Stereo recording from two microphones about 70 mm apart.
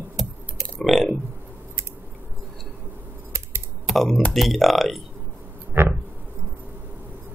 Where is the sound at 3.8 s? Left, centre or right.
Centre.